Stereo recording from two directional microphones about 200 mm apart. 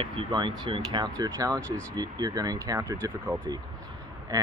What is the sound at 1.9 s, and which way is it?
Speech, 20° right (ahead or behind).